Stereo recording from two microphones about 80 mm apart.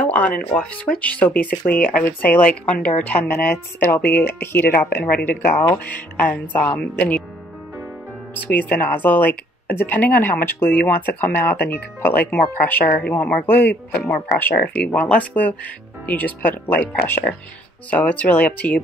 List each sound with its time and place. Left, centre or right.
0.0 s a sound: centre
0.5 s speech: centre
8.5 s speech: left